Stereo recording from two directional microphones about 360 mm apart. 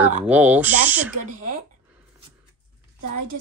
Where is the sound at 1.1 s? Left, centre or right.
Right.